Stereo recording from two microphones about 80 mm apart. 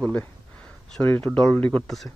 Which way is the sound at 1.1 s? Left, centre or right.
Centre.